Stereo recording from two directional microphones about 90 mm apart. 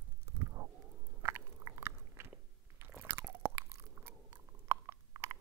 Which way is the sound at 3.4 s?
30° right (ahead or behind).